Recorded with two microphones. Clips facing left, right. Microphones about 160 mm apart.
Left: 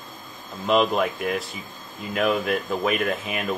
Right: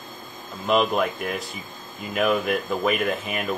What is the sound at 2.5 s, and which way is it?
Speech, centre (ahead or behind).